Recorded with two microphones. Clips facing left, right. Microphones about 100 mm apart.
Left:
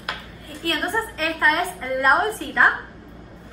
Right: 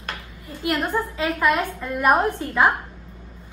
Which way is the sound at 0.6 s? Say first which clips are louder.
Right 1 dB; 20° right (ahead or behind).